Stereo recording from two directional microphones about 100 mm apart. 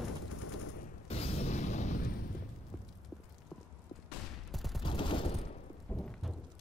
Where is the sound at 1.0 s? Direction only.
90° left.